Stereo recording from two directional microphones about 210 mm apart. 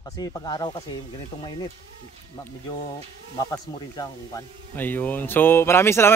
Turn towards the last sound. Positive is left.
turn(degrees=10)  # may be behind; listen again after turning